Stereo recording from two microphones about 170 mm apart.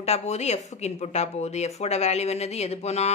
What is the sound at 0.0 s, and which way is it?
Speech, 40° left (ahead or behind).